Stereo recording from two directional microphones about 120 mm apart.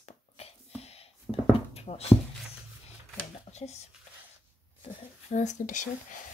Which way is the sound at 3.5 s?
65° left (ahead or behind).